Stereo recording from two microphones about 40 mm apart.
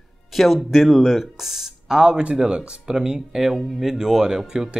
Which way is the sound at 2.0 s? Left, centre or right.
Right.